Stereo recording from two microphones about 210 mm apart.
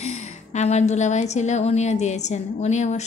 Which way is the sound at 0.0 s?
30° left (ahead or behind).